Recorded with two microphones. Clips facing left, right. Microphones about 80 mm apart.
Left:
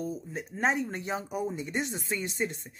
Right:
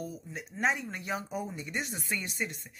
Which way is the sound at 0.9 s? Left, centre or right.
Left.